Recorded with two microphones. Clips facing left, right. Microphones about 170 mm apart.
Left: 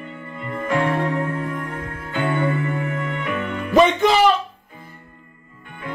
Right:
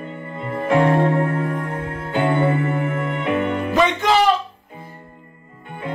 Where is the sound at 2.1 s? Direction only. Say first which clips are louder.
Right 3 dB; 30° right (ahead or behind).